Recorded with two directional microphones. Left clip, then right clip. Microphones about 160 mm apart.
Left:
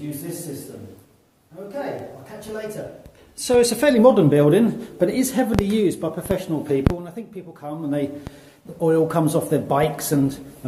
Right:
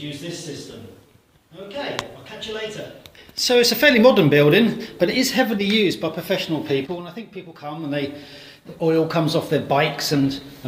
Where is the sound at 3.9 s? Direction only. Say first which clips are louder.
Left 2 dB; centre (ahead or behind).